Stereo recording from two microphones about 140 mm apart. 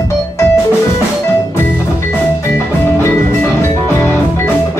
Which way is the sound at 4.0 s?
20° left (ahead or behind).